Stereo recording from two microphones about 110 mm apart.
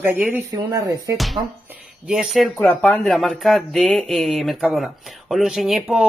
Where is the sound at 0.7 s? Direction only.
35° right (ahead or behind).